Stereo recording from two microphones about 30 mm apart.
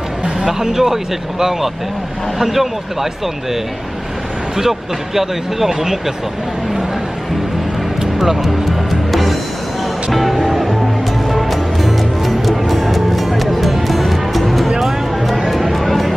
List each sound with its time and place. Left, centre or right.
0.5 s speech: centre
2.3 s speech: centre
4.6 s speech: centre
8.2 s music: centre